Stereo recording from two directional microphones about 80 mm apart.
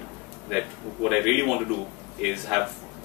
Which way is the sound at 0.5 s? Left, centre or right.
Centre.